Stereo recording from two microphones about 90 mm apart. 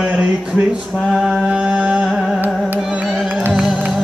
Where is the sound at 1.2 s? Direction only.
10° right (ahead or behind).